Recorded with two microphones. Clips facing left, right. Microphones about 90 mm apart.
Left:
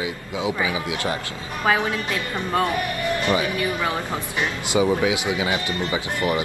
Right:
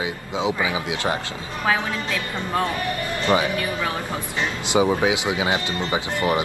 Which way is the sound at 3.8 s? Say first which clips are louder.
Left 1 dB; 15° left (ahead or behind).